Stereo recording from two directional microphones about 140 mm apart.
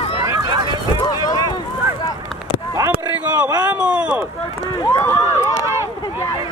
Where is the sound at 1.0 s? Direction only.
25° left (ahead or behind).